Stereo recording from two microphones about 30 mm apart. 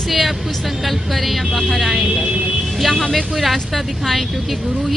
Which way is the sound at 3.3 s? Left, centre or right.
Centre.